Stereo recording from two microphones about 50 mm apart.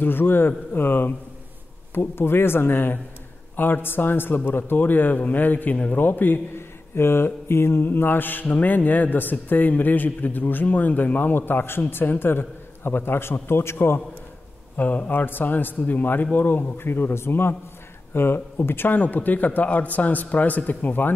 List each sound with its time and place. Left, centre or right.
0.0 s a man's voice: left
4.5 s mantra: left
7.0 s mantra: left
11.8 s a man's voice: left
14.8 s mantra: left